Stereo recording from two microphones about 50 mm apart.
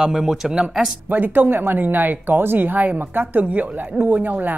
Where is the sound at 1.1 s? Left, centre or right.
Right.